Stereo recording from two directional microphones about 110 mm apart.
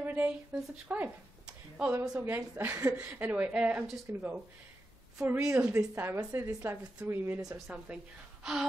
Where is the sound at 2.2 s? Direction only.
20° right (ahead or behind).